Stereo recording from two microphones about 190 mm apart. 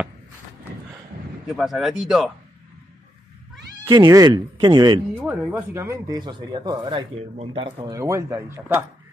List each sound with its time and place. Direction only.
1.6 s speech: centre (ahead or behind)
3.9 s speech: 20° right (ahead or behind)
5.2 s speech: 10° right (ahead or behind)